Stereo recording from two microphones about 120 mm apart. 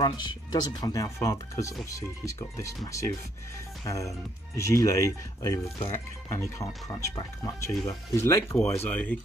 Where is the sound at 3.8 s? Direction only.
25° left (ahead or behind).